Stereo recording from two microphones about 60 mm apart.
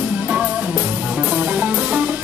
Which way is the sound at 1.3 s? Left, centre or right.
Centre.